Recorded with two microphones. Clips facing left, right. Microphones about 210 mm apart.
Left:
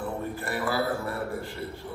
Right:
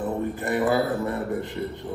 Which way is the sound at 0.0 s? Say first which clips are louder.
Right 5 dB; 20° right (ahead or behind).